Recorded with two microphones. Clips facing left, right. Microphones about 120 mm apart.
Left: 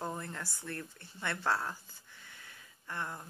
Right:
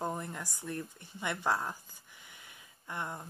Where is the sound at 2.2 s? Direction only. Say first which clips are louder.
Left 1 dB; 15° right (ahead or behind).